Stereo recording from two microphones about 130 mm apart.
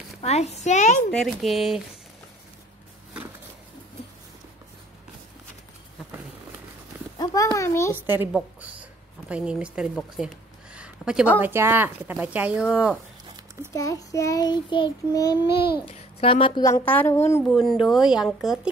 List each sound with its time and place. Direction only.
0.2 s a woman's voice: 55° left (ahead or behind)
1.1 s speech: centre (ahead or behind)
7.5 s a child's voice: 20° left (ahead or behind)
7.9 s speech: 15° right (ahead or behind)
13.7 s child singing: 25° left (ahead or behind)
15.8 s a woman's voice: 45° left (ahead or behind)
16.8 s a woman's voice: 15° left (ahead or behind)
17.5 s speech: 5° left (ahead or behind)